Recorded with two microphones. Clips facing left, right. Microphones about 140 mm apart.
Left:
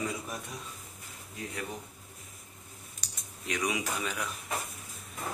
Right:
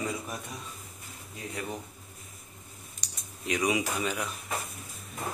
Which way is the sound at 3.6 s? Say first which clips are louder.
Right 4 dB; 5° right (ahead or behind).